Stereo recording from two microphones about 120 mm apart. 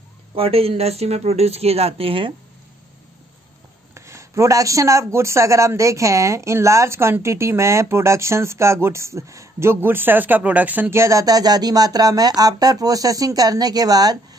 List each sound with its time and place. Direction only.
0.4 s speech: 55° right (ahead or behind)
3.9 s speech: 25° right (ahead or behind)